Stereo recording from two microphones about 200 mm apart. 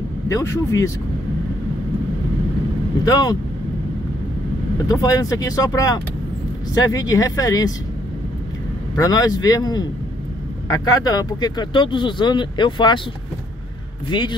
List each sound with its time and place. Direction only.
0.3 s speech: 15° left (ahead or behind)
3.1 s speech: 20° left (ahead or behind)
4.8 s speech: 15° left (ahead or behind)
8.9 s speech: 20° left (ahead or behind)
14.0 s speech: 25° left (ahead or behind)